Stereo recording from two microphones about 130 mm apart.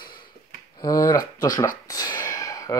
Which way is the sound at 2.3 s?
30° left (ahead or behind).